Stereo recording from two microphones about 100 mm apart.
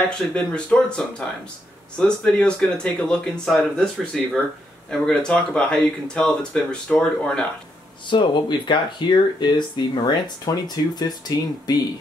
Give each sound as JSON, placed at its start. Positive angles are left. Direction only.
{"t": 0.3, "sound": "speech", "side_deg": 10}
{"t": 8.1, "sound": "speech", "side_deg": 55}